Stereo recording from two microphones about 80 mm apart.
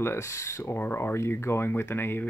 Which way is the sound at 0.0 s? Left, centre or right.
Left.